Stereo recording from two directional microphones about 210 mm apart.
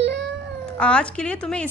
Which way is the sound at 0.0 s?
55° right (ahead or behind).